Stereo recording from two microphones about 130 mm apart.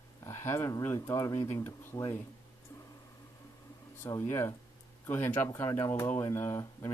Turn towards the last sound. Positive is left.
turn(degrees=20)  # may be behind; listen again after turning